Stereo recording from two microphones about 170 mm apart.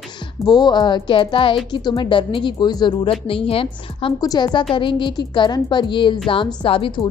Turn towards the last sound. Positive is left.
turn(degrees=30)  # may be behind; listen again after turning